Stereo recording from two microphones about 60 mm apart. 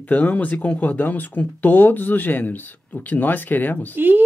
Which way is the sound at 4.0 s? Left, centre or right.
Right.